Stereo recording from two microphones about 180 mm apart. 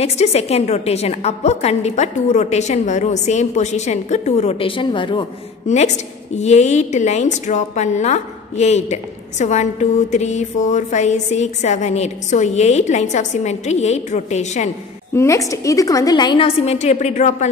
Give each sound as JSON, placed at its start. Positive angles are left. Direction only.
{"t": 0.0, "sound": "a woman's voice", "side_deg": 35}
{"t": 5.7, "sound": "a woman's voice", "side_deg": 40}
{"t": 15.1, "sound": "a woman's voice", "side_deg": 15}